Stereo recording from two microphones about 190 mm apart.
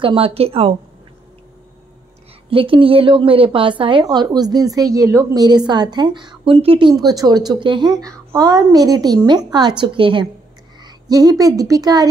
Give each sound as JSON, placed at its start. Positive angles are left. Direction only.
{"t": 0.0, "sound": "a woman's voice", "side_deg": -30}
{"t": 2.5, "sound": "a woman's voice", "side_deg": -25}